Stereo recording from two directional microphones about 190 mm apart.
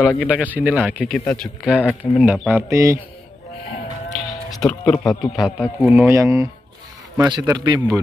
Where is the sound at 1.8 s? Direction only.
10° left (ahead or behind).